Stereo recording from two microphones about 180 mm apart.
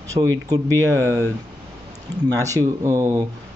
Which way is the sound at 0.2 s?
25° right (ahead or behind).